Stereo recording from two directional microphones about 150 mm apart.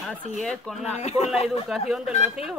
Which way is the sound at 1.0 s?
45° left (ahead or behind).